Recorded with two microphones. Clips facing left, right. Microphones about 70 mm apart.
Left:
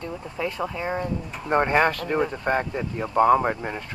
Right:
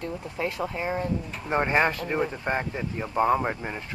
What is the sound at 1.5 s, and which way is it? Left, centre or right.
Speech, centre.